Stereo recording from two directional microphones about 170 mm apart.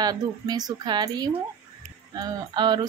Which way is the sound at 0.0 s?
25° right (ahead or behind).